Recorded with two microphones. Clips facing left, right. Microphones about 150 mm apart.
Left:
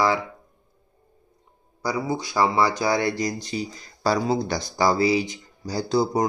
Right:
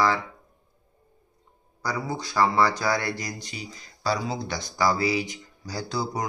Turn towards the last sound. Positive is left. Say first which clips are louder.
# left 8 dB
turn(degrees=25)  # may be behind; listen again after turning